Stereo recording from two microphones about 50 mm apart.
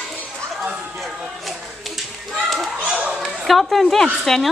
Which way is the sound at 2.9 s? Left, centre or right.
Right.